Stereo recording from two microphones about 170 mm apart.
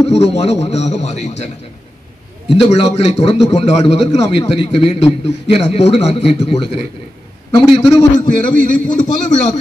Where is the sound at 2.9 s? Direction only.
35° left (ahead or behind).